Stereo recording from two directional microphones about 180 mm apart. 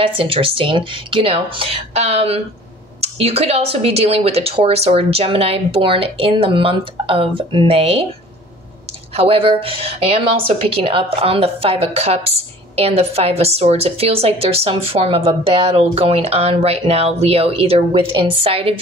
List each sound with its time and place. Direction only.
0.0 s speech: 30° right (ahead or behind)
9.1 s speech: 30° right (ahead or behind)